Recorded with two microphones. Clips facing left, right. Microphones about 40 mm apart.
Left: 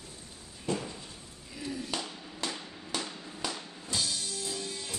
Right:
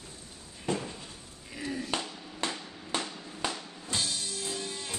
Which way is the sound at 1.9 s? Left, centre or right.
Right.